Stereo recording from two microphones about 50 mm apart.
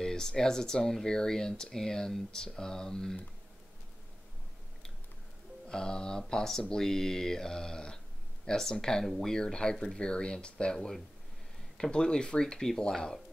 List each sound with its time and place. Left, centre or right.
0.0 s speech: centre
5.7 s speech: centre